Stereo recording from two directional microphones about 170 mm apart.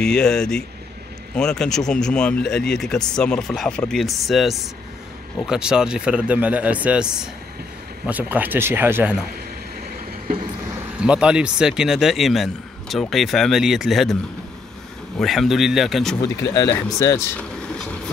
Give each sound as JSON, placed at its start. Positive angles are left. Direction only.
{"t": 0.0, "sound": "speech", "side_deg": 5}
{"t": 11.0, "sound": "speech", "side_deg": -5}
{"t": 15.1, "sound": "speech", "side_deg": 0}
{"t": 16.7, "sound": "speech", "side_deg": 15}